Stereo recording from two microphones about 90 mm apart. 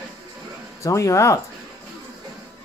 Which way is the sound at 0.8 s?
35° left (ahead or behind).